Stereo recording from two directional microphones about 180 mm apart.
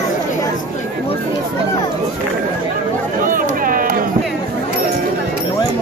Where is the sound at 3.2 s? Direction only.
50° right (ahead or behind).